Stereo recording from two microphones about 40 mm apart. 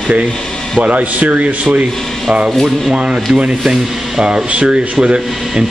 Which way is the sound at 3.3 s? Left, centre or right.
Right.